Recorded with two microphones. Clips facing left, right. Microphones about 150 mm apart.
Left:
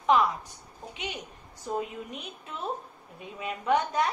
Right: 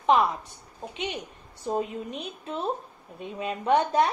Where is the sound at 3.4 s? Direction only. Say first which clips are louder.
Right 3 dB; 30° right (ahead or behind).